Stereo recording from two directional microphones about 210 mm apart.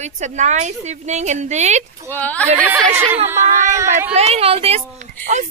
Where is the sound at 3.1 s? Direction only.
10° right (ahead or behind).